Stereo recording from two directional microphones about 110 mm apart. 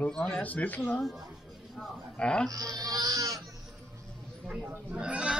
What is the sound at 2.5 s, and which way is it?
Speech, 35° right (ahead or behind).